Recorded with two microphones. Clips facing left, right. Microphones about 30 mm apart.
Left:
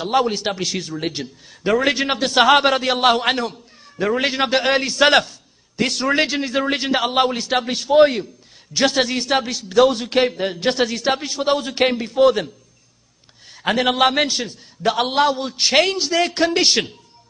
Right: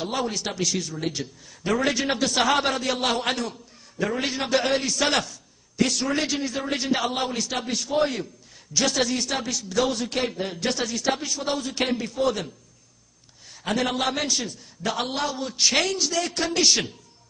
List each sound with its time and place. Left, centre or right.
0.0 s a man's voice: left
13.6 s a man's voice: left